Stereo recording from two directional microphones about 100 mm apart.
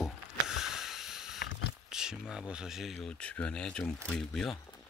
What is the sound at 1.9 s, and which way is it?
Speech, 5° right (ahead or behind).